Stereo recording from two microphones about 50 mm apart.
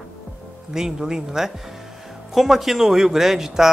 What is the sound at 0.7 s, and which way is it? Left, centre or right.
A man's voice, centre.